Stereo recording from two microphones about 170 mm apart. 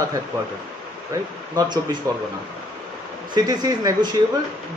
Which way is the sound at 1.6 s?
25° right (ahead or behind).